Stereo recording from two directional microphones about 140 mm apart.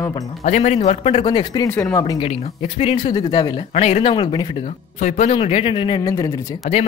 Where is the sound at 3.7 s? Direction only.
50° left (ahead or behind); by 4.5 s 35° left (ahead or behind).